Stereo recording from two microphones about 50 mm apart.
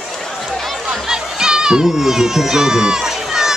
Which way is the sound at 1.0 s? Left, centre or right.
Centre.